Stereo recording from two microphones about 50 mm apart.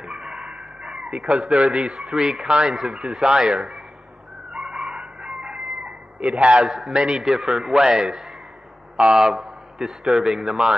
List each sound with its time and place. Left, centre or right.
0.0 s chicken: centre
1.5 s a man's voice: centre
4.5 s chicken: centre
4.7 s chicken: centre
5.9 s cat: right
6.6 s a man's voice: centre